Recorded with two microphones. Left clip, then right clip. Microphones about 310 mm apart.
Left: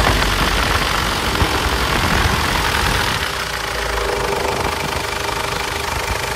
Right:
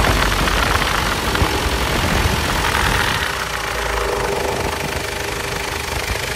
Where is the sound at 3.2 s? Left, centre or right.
Centre.